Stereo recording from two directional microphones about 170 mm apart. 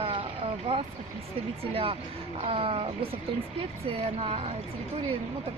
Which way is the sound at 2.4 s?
35° right (ahead or behind).